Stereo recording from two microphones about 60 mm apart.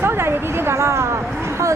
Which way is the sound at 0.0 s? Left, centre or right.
Right.